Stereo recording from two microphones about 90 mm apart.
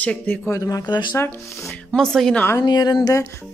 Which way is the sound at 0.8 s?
55° left (ahead or behind).